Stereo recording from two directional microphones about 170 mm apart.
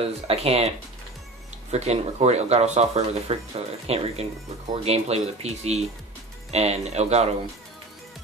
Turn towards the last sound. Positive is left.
turn(degrees=-40)  # may be behind; listen again after turning